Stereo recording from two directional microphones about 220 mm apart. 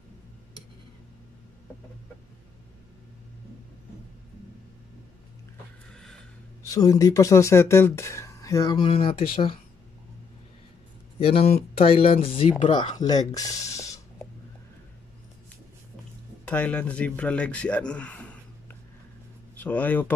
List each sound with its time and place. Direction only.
6.6 s speech: 15° left (ahead or behind)
11.1 s speech: 25° left (ahead or behind)
16.4 s a man's voice: 5° left (ahead or behind)